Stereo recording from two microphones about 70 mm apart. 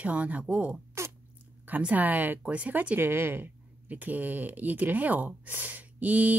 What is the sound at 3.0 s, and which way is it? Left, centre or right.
Speech, right.